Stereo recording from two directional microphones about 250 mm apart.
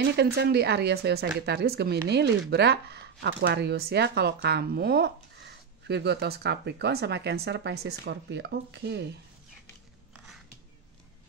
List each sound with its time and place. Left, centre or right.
0.1 s speech: right